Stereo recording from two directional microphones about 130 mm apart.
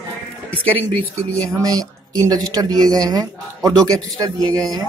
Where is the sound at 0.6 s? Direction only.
15° left (ahead or behind).